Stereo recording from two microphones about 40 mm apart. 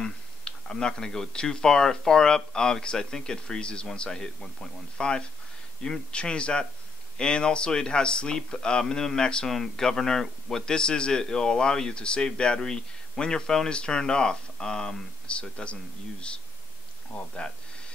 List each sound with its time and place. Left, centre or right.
0.0 s speech: centre
9.5 s speech: centre
15.2 s speech: left